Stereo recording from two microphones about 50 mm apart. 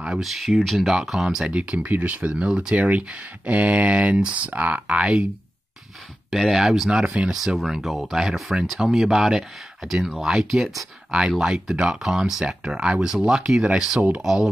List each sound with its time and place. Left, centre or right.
0.2 s speech: centre
1.5 s speech: right
6.3 s speech: centre
13.9 s speech: right
14.2 s speech: centre